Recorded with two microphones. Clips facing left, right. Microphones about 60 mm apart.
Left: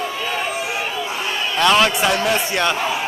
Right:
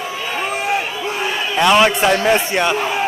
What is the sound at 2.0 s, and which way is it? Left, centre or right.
Speech, right.